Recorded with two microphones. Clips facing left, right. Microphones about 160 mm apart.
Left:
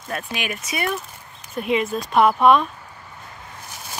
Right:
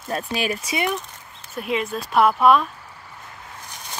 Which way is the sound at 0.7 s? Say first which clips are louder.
Left 1 dB; 15° right (ahead or behind).